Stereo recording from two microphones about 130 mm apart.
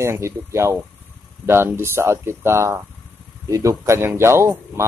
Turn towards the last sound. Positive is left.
turn(degrees=-20)  # may be behind; listen again after turning